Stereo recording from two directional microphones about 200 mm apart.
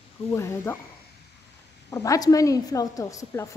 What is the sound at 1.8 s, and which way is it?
Speech, 15° left (ahead or behind).